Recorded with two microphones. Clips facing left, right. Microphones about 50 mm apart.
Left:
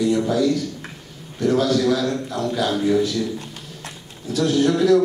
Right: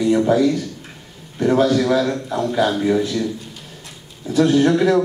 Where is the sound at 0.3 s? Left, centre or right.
Right.